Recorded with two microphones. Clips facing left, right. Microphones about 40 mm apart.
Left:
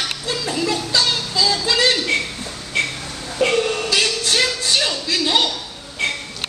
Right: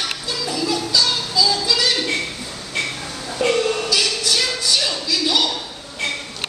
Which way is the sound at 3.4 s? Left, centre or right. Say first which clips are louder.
Left 1 dB; centre.